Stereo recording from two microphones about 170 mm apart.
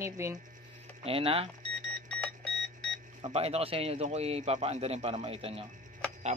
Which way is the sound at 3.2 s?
35° right (ahead or behind).